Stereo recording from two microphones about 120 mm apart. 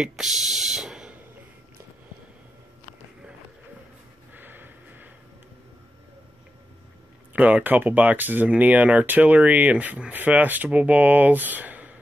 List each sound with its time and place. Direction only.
0.0 s speech: 5° right (ahead or behind)
4.3 s a sound: 15° right (ahead or behind)
7.3 s speech: 10° right (ahead or behind)